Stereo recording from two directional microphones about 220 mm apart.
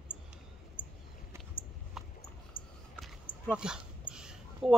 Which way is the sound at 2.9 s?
Centre (ahead or behind).